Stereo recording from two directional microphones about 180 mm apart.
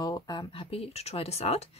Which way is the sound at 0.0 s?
20° left (ahead or behind).